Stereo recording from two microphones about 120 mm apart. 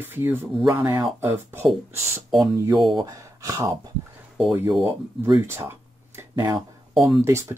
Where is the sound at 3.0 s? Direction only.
30° right (ahead or behind).